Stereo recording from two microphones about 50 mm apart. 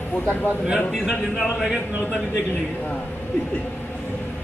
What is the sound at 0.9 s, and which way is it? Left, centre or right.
Speech, centre.